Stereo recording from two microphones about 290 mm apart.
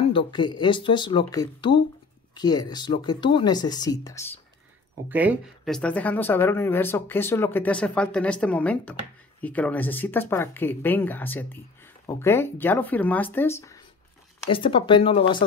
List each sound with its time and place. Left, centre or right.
0.0 s speech: centre
5.1 s speech: centre